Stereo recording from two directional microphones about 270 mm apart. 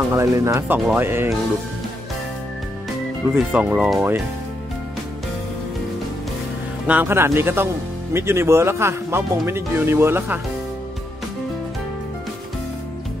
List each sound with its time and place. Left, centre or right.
0.1 s speech: centre
3.3 s speech: centre
6.9 s speech: centre